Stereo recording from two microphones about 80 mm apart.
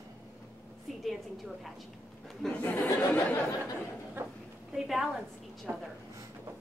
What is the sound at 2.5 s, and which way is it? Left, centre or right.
Speech, centre.